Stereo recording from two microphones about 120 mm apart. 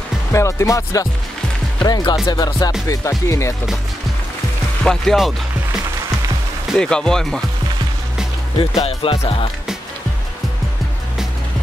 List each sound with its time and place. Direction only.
0.3 s speech: 25° left (ahead or behind)
1.8 s music: 35° left (ahead or behind)
2.9 s speech: 25° left (ahead or behind)
4.8 s speech: centre (ahead or behind)
6.8 s speech: 5° left (ahead or behind)
8.8 s music: 50° left (ahead or behind)